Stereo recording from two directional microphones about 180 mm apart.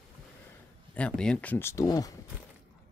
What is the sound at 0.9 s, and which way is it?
Speech, 5° left (ahead or behind).